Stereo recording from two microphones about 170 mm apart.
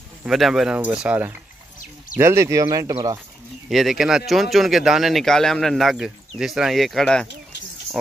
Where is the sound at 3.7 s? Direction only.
Centre (ahead or behind).